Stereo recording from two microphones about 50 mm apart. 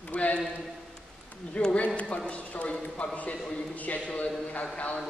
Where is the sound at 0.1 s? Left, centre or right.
Left.